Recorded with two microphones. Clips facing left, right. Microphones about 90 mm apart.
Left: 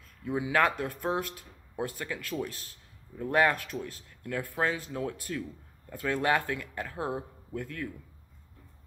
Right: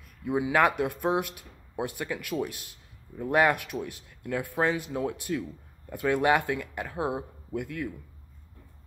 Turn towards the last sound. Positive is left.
turn(degrees=-15)  # may be behind; listen again after turning